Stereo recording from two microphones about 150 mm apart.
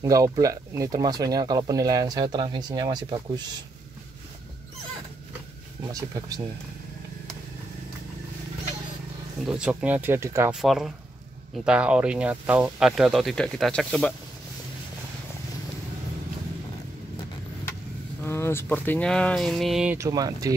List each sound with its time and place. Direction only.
0.0 s speech: 20° right (ahead or behind)
5.9 s speech: 25° right (ahead or behind)
9.5 s speech: 5° right (ahead or behind)
10.5 s speech: centre (ahead or behind)
18.2 s speech: 15° left (ahead or behind); by 20.0 s 5° right (ahead or behind)
20.0 s speech: 25° right (ahead or behind)